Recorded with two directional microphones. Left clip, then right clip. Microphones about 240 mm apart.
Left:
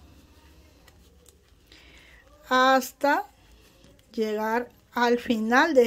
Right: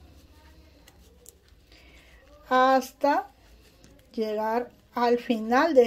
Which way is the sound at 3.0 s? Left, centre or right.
Centre.